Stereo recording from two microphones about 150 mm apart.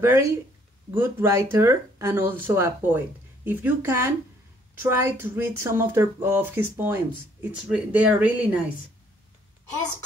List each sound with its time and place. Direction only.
0.0 s speech: 20° right (ahead or behind)